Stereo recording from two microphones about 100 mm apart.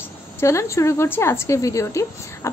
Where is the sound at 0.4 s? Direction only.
30° left (ahead or behind).